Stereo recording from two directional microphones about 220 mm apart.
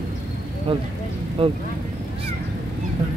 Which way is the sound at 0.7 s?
25° right (ahead or behind).